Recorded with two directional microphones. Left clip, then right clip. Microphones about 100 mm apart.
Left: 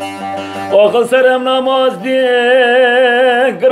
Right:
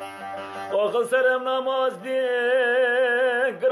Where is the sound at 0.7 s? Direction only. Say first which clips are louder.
Left 13 dB; 20° right (ahead or behind).